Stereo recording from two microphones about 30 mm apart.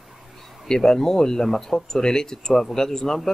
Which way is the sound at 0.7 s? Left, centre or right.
Centre.